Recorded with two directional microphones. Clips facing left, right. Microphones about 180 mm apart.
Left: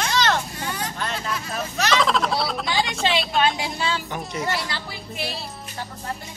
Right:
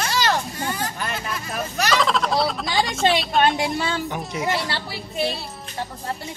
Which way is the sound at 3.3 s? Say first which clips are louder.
Right 3 dB; 55° right (ahead or behind).